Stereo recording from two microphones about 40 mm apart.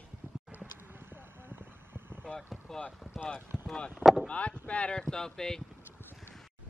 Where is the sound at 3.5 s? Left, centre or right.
Centre.